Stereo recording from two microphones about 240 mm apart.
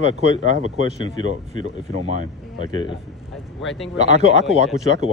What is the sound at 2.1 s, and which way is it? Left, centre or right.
Speech, right.